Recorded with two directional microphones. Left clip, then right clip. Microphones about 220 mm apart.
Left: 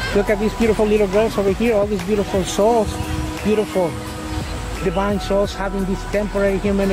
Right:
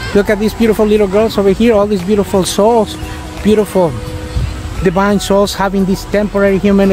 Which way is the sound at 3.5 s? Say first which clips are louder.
Right 8 dB; 40° right (ahead or behind).